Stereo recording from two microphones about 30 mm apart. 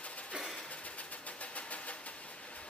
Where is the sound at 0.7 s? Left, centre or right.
Left.